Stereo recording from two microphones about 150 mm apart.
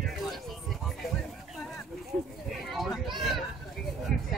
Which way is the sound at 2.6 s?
Centre (ahead or behind).